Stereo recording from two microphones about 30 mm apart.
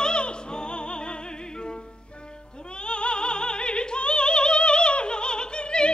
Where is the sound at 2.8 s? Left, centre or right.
Left.